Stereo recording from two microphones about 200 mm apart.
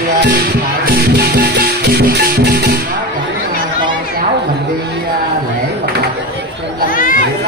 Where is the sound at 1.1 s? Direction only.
50° right (ahead or behind).